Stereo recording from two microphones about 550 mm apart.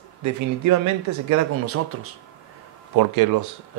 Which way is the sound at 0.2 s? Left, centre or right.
Right.